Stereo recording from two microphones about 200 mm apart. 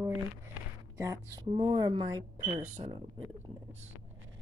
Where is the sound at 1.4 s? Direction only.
25° right (ahead or behind).